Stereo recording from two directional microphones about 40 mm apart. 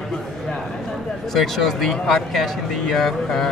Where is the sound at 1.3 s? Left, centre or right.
Centre.